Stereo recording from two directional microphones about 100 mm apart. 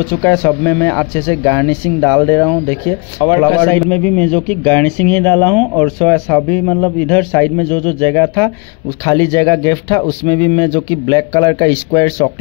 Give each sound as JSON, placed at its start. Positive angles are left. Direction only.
{"t": 0.0, "sound": "speech", "side_deg": 25}
{"t": 3.9, "sound": "speech", "side_deg": 15}
{"t": 9.0, "sound": "speech", "side_deg": 30}